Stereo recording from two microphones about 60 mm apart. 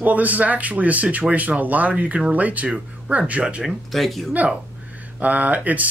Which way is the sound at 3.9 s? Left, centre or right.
Centre.